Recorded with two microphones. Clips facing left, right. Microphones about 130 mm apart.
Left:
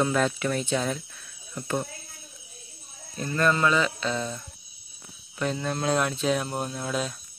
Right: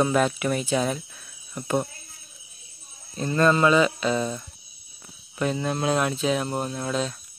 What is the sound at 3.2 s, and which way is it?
Speech, 25° right (ahead or behind).